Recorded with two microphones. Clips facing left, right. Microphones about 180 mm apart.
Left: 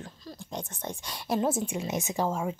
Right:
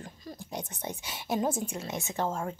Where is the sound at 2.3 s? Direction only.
10° left (ahead or behind).